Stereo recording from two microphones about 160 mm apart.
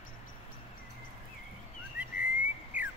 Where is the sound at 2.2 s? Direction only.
10° right (ahead or behind).